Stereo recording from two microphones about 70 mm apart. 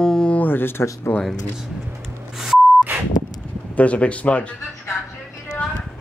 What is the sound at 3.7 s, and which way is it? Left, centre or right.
Speech, centre.